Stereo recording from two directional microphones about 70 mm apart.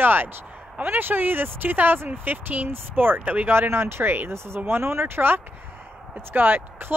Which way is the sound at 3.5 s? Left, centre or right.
Right.